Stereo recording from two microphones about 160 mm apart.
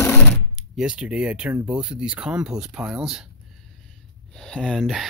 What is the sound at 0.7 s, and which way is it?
Speech, 5° right (ahead or behind).